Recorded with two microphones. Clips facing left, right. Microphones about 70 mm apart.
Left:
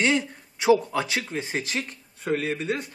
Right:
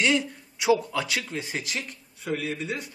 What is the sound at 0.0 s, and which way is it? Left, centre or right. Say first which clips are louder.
Speech: left 1 dB; left.